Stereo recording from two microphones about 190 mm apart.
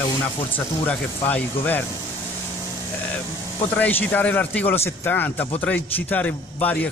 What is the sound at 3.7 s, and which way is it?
Speech, 10° left (ahead or behind).